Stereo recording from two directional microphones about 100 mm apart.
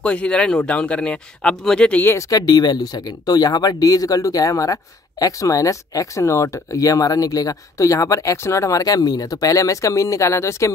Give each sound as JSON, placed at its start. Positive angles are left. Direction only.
{"t": 0.0, "sound": "speech", "side_deg": 10}
{"t": 2.0, "sound": "speech", "side_deg": 30}